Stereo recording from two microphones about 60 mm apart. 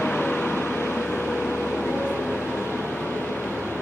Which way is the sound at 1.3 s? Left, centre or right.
Left.